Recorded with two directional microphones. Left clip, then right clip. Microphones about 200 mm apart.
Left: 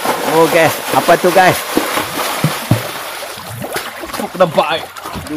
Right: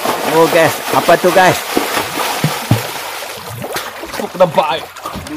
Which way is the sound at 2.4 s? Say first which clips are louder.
Even; 35° right (ahead or behind).